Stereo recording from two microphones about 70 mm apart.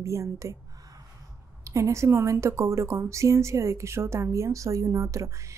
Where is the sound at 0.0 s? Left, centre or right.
Right.